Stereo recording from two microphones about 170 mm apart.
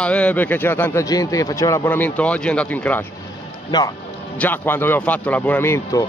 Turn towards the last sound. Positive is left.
turn(degrees=15)  # may be behind; listen again after turning